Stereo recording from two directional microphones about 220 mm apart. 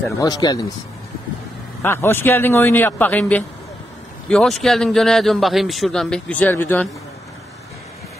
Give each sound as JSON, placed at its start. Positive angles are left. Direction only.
{"t": 0.2, "sound": "a man's voice", "side_deg": 15}
{"t": 1.8, "sound": "a man's voice", "side_deg": 10}